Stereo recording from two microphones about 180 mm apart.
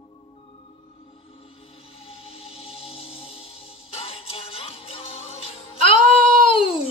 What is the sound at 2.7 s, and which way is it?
Music, 30° left (ahead or behind).